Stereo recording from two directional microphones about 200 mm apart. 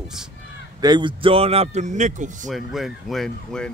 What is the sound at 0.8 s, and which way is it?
A man's voice, 20° right (ahead or behind).